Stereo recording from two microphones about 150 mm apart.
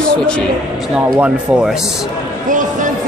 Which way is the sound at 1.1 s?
5° right (ahead or behind).